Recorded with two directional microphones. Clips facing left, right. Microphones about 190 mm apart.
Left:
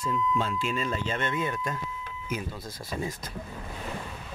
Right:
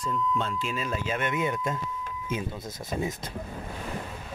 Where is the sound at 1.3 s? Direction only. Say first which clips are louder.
Right 2 dB; 20° right (ahead or behind).